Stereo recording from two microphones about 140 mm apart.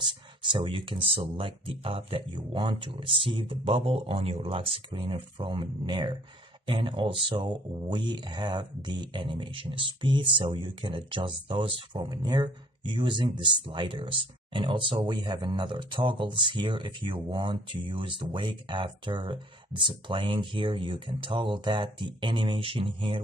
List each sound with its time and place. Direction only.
0.4 s speech: 35° right (ahead or behind)